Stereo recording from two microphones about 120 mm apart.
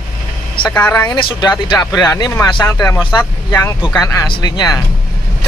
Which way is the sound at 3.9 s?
30° left (ahead or behind).